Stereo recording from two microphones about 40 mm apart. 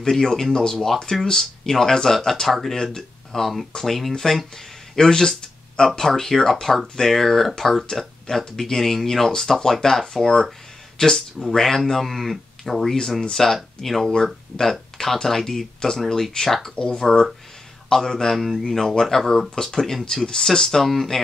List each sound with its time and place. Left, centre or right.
0.0 s speech: centre
4.9 s a sound: centre
5.9 s speech: centre
12.9 s speech: centre
16.7 s speech: left; by 21.2 s centre